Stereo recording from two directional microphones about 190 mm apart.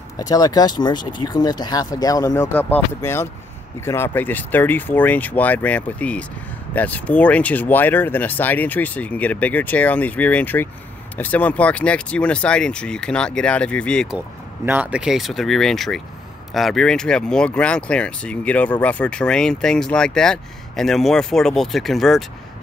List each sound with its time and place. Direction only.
0.2 s speech: 20° left (ahead or behind); by 14.2 s 5° left (ahead or behind)
14.7 s speech: 5° right (ahead or behind)